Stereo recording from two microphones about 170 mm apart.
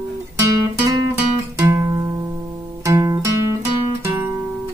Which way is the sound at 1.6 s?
15° right (ahead or behind).